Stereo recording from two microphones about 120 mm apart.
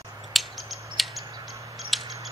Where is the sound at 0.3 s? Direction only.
Centre (ahead or behind).